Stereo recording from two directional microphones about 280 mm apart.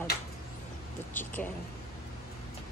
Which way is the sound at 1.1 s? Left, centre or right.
Centre.